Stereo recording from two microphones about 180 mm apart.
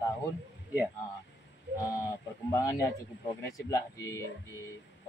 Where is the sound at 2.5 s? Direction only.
15° left (ahead or behind).